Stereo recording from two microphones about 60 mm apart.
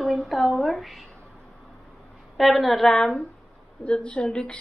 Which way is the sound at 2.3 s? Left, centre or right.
Centre.